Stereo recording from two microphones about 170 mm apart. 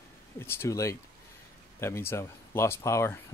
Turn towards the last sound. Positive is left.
turn(degrees=15)  # may be behind; listen again after turning